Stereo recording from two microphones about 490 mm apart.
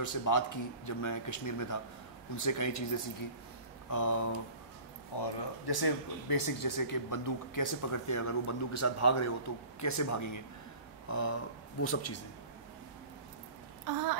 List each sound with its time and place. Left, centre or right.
0.0 s speech: left
5.1 s a man's voice: left
13.8 s babbling: right